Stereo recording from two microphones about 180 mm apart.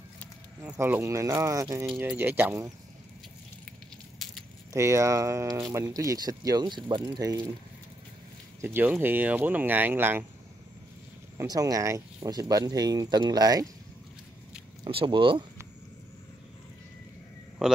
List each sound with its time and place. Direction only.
0.6 s speech: 10° right (ahead or behind)
4.7 s speech: 15° right (ahead or behind)
8.5 s speech: 10° right (ahead or behind)
11.3 s speech: 20° right (ahead or behind)
14.9 s speech: 30° right (ahead or behind)
17.6 s a man's voice: 5° right (ahead or behind)